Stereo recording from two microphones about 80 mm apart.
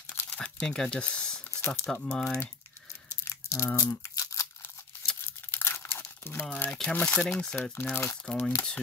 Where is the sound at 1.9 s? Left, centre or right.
Centre.